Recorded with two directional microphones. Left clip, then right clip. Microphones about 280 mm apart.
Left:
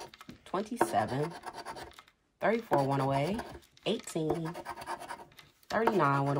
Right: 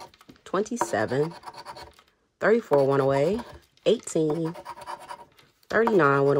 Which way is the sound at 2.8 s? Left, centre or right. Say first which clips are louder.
Right 9 dB; right.